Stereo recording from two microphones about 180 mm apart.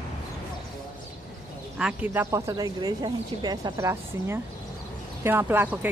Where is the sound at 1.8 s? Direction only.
5° right (ahead or behind).